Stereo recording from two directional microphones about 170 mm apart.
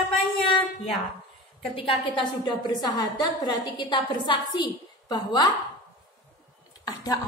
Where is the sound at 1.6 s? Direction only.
30° left (ahead or behind).